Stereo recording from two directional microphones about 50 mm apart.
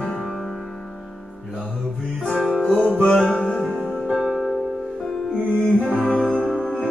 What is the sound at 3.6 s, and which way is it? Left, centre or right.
Music, centre.